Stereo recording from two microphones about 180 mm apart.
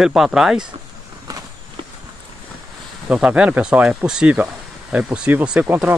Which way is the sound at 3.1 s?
5° right (ahead or behind).